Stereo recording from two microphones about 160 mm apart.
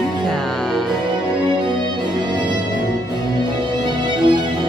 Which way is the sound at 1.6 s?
25° right (ahead or behind).